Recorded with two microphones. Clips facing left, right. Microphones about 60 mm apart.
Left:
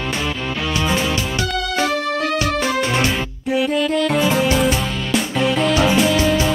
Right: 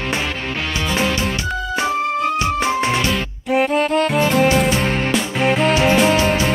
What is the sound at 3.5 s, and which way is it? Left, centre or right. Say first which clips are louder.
Music: right 2 dB; right.